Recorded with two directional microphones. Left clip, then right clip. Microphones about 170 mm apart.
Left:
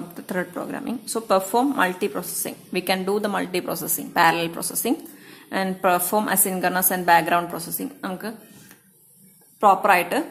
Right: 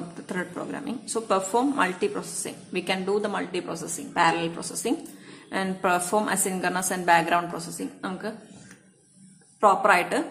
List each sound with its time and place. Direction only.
0.3 s a woman's voice: 30° left (ahead or behind)
9.6 s a woman's voice: 30° left (ahead or behind)